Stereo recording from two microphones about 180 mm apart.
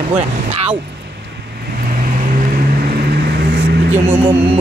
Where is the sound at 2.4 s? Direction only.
60° right (ahead or behind).